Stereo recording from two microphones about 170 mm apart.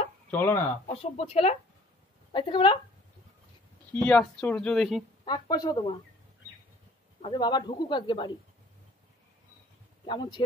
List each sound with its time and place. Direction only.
0.3 s speech: 15° left (ahead or behind)
0.8 s a man's voice: 40° left (ahead or behind)
3.9 s speech: 5° left (ahead or behind)
5.2 s a man's voice: 25° left (ahead or behind)
7.2 s a man's voice: 30° left (ahead or behind)
10.0 s a man's voice: 30° left (ahead or behind)